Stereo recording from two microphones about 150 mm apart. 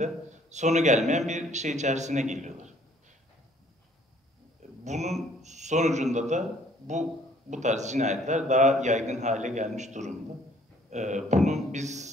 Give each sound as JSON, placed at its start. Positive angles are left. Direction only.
{"t": 0.0, "sound": "a man's voice", "side_deg": -50}
{"t": 4.8, "sound": "a man's voice", "side_deg": -50}